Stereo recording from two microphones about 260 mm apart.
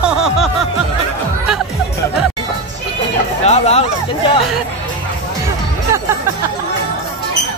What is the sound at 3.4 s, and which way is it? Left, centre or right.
Speech, left.